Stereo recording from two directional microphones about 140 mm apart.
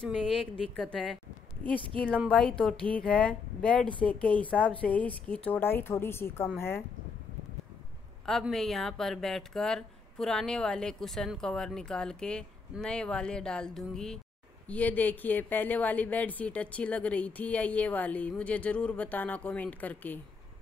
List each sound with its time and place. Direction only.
0.0 s speech: 5° left (ahead or behind)
2.2 s speech: 10° left (ahead or behind)
8.3 s speech: centre (ahead or behind)